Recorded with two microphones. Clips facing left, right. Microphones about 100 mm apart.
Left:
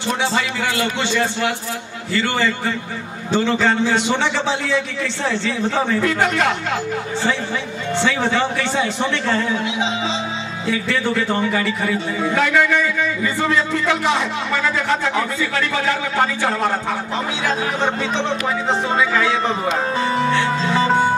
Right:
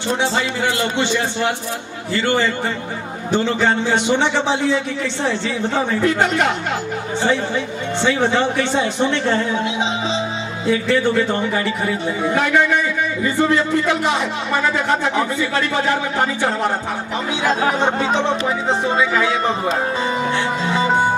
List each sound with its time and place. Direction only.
0.2 s a man's voice: 20° right (ahead or behind)
8.0 s a man's voice: 20° right (ahead or behind)
17.7 s speech: 20° right (ahead or behind)
20.2 s music: 15° right (ahead or behind)